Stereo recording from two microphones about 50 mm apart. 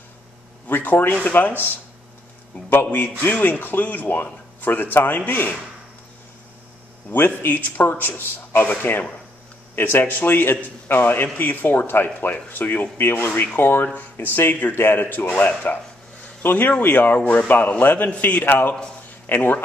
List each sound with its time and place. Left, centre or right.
0.7 s a sound: left
1.2 s a man's voice: left
2.7 s a man's voice: left
7.1 s a man's voice: left
14.5 s a man's voice: left